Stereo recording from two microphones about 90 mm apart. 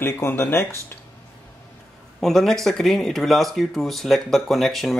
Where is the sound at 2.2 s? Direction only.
5° left (ahead or behind).